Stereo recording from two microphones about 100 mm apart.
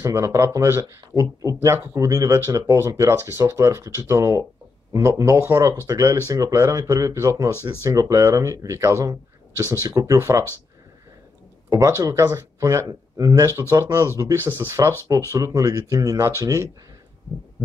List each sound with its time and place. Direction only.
0.0 s speech: 30° right (ahead or behind)
11.7 s speech: 35° right (ahead or behind)